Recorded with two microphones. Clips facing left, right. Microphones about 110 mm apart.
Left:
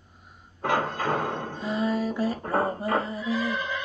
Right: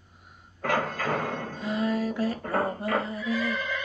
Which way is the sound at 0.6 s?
20° left (ahead or behind).